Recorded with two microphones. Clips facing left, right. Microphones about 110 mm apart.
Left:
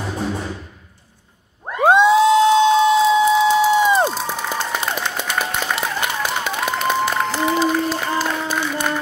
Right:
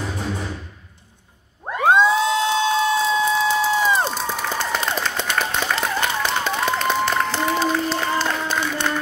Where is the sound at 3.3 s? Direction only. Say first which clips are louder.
Left 5 dB; 20° left (ahead or behind).